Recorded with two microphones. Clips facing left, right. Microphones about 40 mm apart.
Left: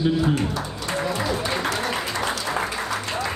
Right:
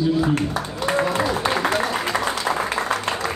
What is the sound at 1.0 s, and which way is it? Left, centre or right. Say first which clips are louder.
Music: right 2 dB; right.